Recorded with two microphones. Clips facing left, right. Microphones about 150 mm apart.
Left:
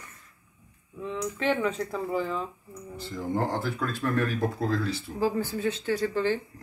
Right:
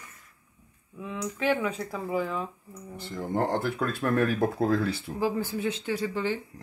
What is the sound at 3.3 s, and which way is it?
Speech, 55° right (ahead or behind).